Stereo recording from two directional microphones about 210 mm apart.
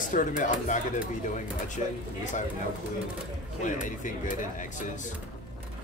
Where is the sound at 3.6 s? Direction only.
35° left (ahead or behind).